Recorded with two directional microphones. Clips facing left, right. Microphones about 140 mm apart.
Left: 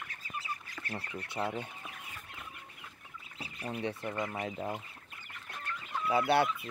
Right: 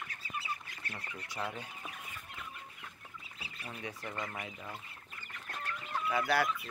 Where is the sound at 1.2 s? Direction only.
25° left (ahead or behind).